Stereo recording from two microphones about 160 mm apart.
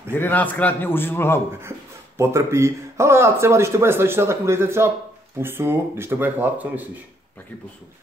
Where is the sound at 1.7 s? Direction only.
15° right (ahead or behind).